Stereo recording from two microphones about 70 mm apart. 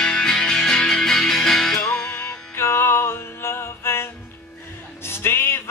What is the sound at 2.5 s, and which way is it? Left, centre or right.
Music, left.